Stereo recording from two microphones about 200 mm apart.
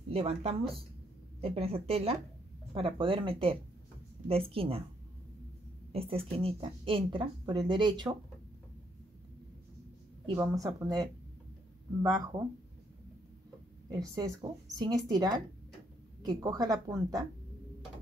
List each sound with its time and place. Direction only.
0.1 s speech: 30° right (ahead or behind)
5.9 s speech: 30° right (ahead or behind)
10.2 s speech: 20° right (ahead or behind)
13.8 s speech: 20° right (ahead or behind)